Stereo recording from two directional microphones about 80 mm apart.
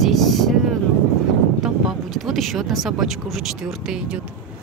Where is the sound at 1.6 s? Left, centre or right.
Centre.